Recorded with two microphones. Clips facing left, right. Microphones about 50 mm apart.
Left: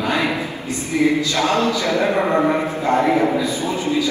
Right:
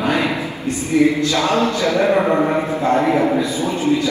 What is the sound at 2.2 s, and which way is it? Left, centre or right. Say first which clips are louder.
Speech: right 1 dB; centre.